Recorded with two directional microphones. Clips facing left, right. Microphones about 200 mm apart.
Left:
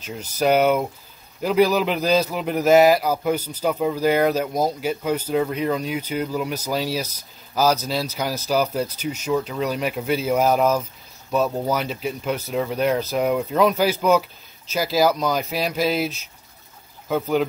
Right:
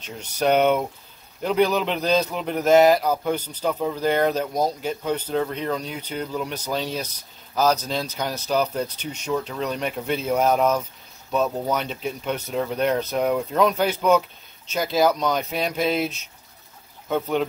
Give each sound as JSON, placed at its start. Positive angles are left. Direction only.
{"t": 0.0, "sound": "speech", "side_deg": 5}